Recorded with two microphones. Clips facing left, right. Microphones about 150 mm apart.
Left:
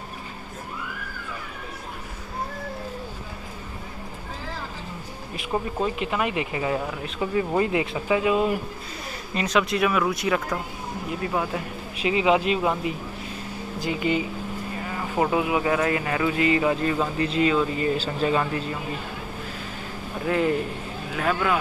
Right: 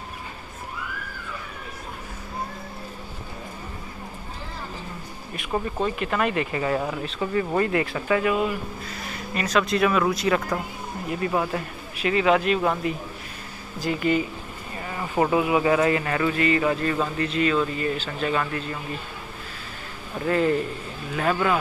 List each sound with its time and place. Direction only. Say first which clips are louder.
5.5 s speech: even; 10° left (ahead or behind)
12.1 s speech: right 1 dB; 10° left (ahead or behind)
15.0 s speech: right 2 dB; centre (ahead or behind); by 18.6 s 20° left (ahead or behind)
20.2 s speech: right 1 dB; 10° left (ahead or behind)